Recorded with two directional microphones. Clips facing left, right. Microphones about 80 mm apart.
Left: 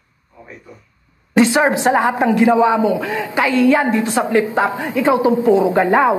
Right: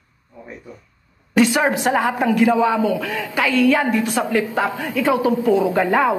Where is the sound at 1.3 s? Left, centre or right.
Left.